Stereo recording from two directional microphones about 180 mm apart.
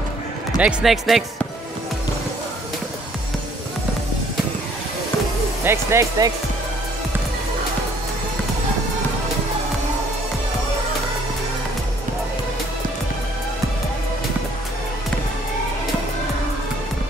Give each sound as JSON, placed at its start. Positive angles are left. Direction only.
{"t": 0.6, "sound": "speech", "side_deg": -5}
{"t": 5.6, "sound": "speech", "side_deg": -15}